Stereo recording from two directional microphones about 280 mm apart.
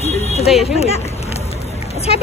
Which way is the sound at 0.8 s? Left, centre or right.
Left.